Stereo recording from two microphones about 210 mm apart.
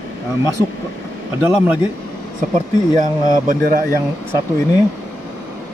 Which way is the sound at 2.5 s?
35° right (ahead or behind).